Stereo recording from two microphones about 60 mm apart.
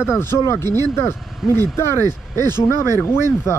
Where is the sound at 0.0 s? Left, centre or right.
Left.